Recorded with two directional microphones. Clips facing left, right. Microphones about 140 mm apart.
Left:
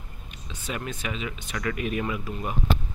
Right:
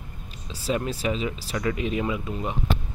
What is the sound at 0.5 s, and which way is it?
Speech, 35° right (ahead or behind).